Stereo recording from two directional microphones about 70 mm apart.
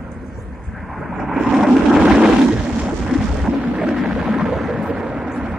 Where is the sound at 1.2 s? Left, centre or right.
Centre.